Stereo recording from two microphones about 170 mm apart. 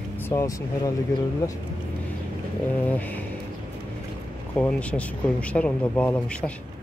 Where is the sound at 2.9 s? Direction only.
10° left (ahead or behind).